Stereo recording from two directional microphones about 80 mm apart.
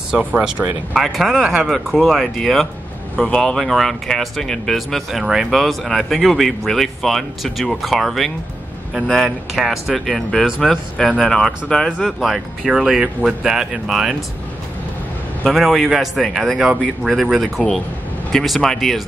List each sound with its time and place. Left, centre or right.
0.1 s speech: centre
15.4 s speech: centre